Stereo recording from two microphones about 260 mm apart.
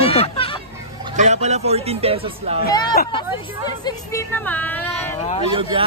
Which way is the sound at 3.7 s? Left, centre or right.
Centre.